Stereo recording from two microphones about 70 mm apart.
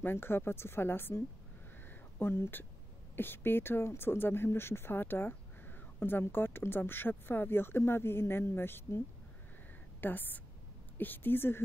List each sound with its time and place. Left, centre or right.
0.0 s a woman's voice: left